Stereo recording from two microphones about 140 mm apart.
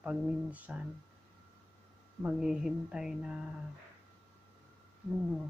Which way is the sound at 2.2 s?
5° right (ahead or behind).